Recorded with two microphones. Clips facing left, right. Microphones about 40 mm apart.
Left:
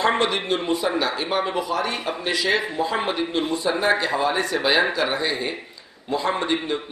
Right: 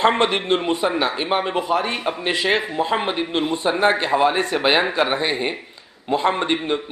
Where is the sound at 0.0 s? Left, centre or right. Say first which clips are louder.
Right 3 dB; right.